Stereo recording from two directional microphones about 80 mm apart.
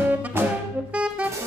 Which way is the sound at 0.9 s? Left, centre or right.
Centre.